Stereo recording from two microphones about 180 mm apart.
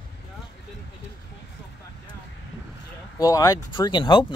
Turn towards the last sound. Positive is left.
turn(degrees=25)  # may be behind; listen again after turning